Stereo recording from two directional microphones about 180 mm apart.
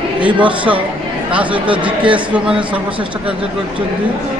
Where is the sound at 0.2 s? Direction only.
5° right (ahead or behind).